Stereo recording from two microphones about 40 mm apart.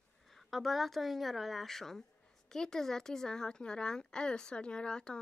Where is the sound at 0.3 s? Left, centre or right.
Centre.